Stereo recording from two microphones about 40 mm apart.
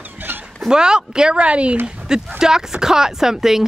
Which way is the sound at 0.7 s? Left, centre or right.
Centre.